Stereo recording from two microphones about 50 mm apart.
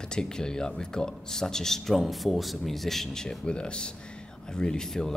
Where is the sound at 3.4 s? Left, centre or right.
Centre.